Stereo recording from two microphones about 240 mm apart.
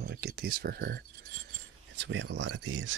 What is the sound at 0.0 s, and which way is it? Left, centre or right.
Speech, right.